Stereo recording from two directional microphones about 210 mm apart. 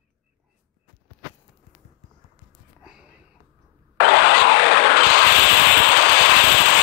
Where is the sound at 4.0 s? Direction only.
60° left (ahead or behind).